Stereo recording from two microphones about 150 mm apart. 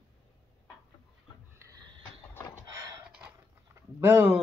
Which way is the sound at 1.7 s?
30° right (ahead or behind).